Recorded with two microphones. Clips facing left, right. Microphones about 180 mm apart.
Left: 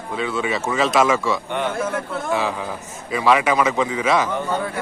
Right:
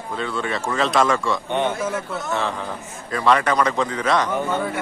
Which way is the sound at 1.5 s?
20° right (ahead or behind).